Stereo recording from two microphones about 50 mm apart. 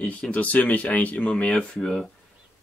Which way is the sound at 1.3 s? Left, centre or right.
Left.